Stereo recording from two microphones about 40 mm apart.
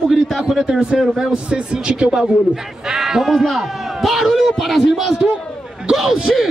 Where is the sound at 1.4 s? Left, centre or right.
Right; by 5.1 s centre.